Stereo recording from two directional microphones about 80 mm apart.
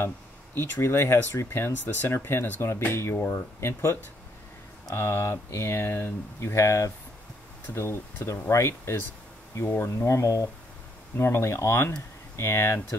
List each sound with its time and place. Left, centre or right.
0.6 s speech: left
8.5 s speech: left